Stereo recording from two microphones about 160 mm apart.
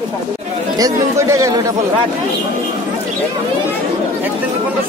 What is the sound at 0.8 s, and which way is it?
Speech, 20° right (ahead or behind).